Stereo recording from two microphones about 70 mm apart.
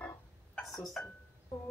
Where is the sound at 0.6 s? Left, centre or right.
Centre.